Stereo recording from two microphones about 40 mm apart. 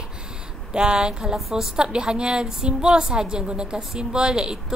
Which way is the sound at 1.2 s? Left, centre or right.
Centre.